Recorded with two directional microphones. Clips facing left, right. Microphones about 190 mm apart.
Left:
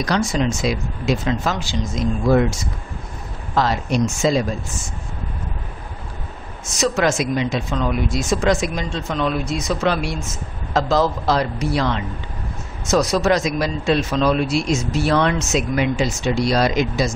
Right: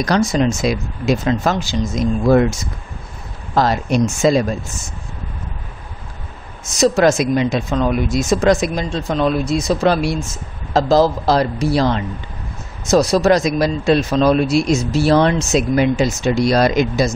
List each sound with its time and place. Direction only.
0.1 s speech: 40° right (ahead or behind)
3.6 s speech: 40° right (ahead or behind)
3.9 s speech: 55° right (ahead or behind)
6.8 s speech: 40° right (ahead or behind)